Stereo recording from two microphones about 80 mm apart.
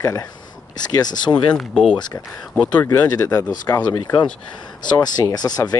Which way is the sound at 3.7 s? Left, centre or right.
Left.